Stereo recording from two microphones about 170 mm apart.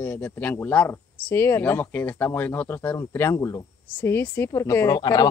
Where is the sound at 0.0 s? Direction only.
10° left (ahead or behind).